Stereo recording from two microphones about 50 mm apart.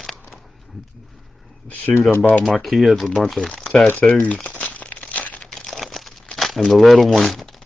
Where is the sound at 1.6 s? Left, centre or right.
Left.